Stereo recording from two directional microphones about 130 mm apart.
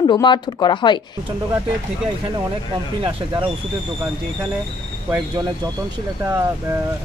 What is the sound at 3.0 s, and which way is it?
Speech, 40° right (ahead or behind).